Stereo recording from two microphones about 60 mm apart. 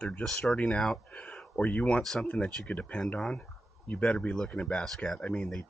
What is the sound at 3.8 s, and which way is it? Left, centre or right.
Speech, left.